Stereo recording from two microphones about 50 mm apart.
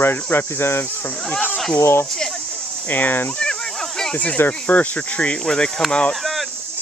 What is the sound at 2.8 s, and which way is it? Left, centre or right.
Speech, left.